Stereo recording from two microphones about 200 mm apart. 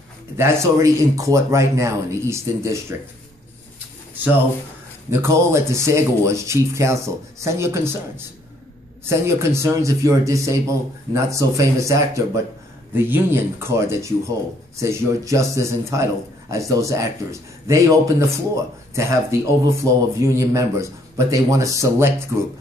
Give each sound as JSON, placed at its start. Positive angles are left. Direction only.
{"t": 0.4, "sound": "a man's voice", "side_deg": -15}
{"t": 5.1, "sound": "a man's voice", "side_deg": -15}
{"t": 9.0, "sound": "a man's voice", "side_deg": -15}